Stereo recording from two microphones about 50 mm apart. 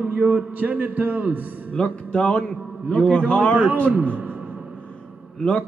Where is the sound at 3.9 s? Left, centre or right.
Right.